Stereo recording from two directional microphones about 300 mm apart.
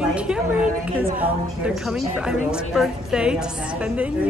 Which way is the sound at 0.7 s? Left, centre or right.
Right.